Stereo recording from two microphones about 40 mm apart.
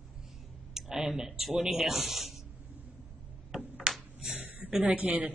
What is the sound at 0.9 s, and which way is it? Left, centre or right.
Speech, centre.